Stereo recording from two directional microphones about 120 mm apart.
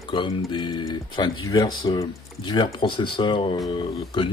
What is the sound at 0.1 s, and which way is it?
Speech, 40° left (ahead or behind).